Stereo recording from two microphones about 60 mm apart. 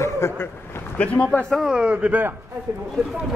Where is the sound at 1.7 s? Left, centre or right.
Centre.